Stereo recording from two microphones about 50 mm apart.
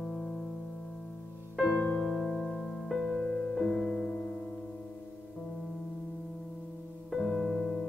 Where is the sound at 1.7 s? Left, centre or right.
Centre.